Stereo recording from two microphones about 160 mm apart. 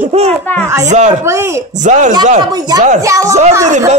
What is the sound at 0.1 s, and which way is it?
A child's voice, 40° right (ahead or behind).